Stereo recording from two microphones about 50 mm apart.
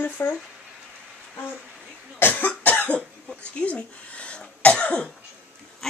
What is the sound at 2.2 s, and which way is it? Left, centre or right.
Cough, left.